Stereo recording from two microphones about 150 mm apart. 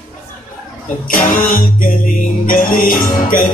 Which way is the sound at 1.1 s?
70° left (ahead or behind).